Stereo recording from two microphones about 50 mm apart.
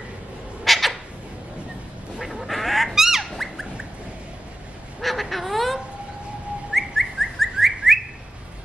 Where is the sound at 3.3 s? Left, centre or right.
Centre.